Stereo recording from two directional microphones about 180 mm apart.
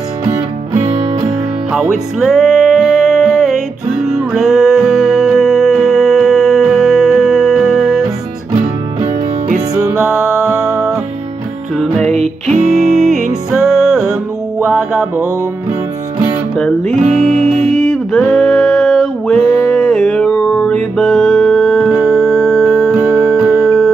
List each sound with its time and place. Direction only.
0.7 s music: 35° right (ahead or behind)
2.1 s music: centre (ahead or behind)
9.9 s music: 10° right (ahead or behind)
11.7 s music: centre (ahead or behind)
12.1 s music: 40° right (ahead or behind)
13.5 s music: centre (ahead or behind)
16.8 s music: 40° right (ahead or behind)
17.7 s music: centre (ahead or behind)